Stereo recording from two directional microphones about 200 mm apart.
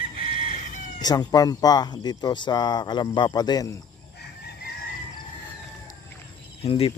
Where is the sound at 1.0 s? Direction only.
20° left (ahead or behind).